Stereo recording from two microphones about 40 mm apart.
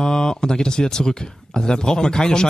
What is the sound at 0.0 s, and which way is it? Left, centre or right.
Speech, centre.